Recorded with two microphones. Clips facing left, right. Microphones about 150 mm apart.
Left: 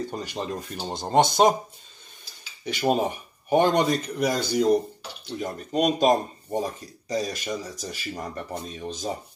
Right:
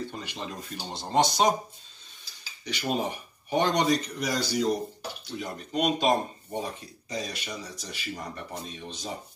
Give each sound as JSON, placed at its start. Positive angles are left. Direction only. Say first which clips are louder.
{"t": 0.2, "sound": "speech", "louder": "left 6 dB", "side_deg": 45}
{"t": 2.6, "sound": "speech", "louder": "left 6 dB", "side_deg": 50}